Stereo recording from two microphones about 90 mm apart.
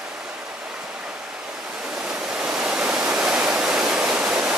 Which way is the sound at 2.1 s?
10° right (ahead or behind).